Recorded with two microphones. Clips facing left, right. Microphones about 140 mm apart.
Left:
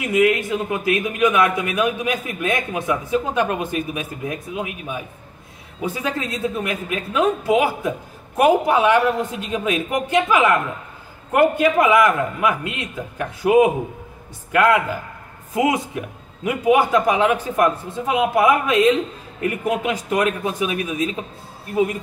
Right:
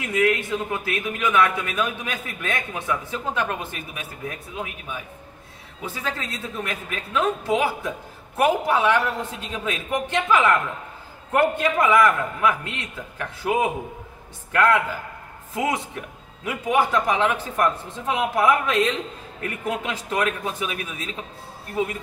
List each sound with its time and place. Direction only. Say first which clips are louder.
0.0 s a man's voice: left 4 dB; 15° left (ahead or behind)